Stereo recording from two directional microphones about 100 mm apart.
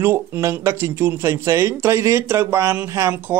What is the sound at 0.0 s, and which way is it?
Speech, 30° right (ahead or behind).